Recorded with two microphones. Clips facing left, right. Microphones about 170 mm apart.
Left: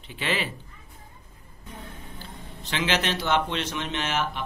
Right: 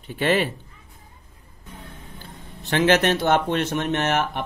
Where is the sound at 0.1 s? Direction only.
50° right (ahead or behind).